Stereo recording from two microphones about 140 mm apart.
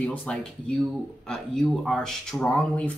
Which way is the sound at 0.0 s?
10° left (ahead or behind).